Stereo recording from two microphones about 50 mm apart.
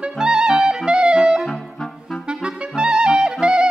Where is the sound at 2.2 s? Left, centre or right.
Centre.